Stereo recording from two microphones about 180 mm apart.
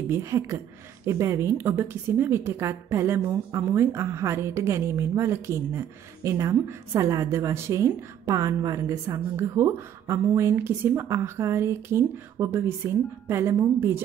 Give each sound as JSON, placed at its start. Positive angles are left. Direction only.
{"t": 0.1, "sound": "a woman's voice", "side_deg": -15}